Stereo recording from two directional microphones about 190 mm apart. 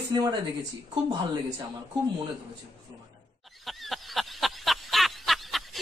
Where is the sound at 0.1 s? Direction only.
25° right (ahead or behind).